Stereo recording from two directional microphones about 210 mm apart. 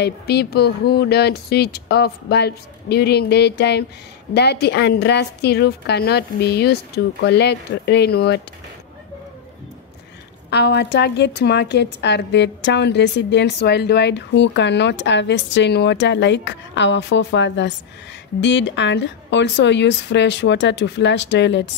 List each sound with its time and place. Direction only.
0.0 s a woman's voice: 50° left (ahead or behind)
10.5 s a woman's voice: 50° left (ahead or behind)